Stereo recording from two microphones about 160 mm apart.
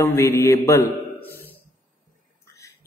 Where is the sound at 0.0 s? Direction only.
15° left (ahead or behind).